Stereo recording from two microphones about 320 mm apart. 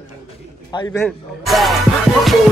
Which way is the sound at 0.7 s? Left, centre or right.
Centre.